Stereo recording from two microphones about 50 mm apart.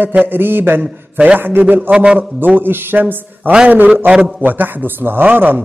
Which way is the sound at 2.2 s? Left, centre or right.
Right.